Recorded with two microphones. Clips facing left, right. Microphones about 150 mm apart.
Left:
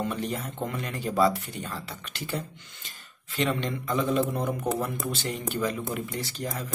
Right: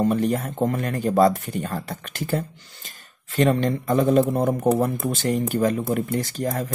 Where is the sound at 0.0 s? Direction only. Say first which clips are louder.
Right 9 dB; 45° right (ahead or behind).